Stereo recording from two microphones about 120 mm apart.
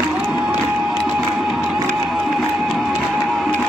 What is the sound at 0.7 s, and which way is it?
Music, centre (ahead or behind).